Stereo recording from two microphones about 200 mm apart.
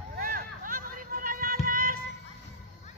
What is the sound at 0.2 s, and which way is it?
Music, 45° right (ahead or behind).